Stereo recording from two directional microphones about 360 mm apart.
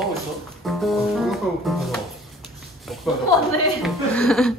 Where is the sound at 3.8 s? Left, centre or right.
Centre.